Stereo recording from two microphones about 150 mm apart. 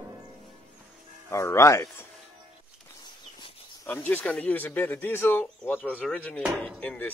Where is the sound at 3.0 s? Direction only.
30° left (ahead or behind).